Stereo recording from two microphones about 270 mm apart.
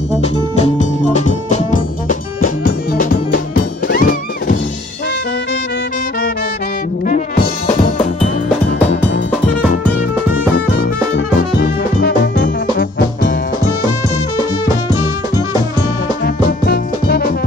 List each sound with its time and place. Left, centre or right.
0.7 s music: left
10.8 s music: left
16.6 s music: left